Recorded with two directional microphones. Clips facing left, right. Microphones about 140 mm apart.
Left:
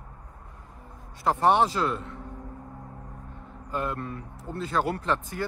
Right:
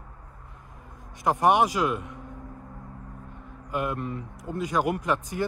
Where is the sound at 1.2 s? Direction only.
15° right (ahead or behind).